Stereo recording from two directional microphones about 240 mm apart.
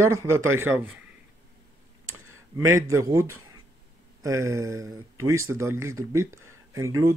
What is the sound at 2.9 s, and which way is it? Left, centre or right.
Speech, centre.